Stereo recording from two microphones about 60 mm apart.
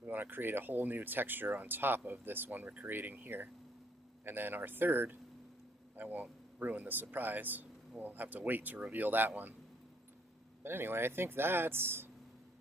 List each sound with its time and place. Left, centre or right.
0.0 s speech: right
10.6 s speech: right